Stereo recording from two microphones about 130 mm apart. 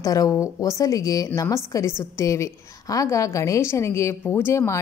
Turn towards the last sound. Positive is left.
turn(degrees=20)  # may be behind; listen again after turning